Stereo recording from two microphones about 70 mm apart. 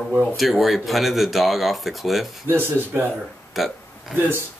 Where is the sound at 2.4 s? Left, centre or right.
Right.